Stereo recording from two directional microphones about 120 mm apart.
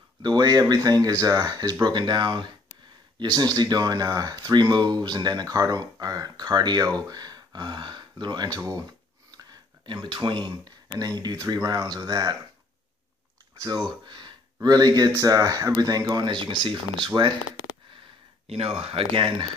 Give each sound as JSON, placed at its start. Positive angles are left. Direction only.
{"t": 0.2, "sound": "speech", "side_deg": -35}
{"t": 13.6, "sound": "speech", "side_deg": -30}
{"t": 18.5, "sound": "speech", "side_deg": -55}